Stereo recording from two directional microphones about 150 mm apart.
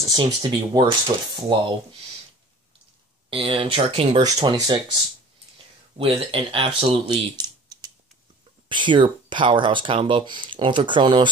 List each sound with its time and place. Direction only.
0.1 s speech: 30° right (ahead or behind)
3.3 s speech: 35° right (ahead or behind)
4.2 s speech: 30° right (ahead or behind)
6.0 s speech: 40° right (ahead or behind)